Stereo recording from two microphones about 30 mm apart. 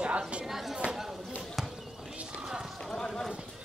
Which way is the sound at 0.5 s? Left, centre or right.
Centre.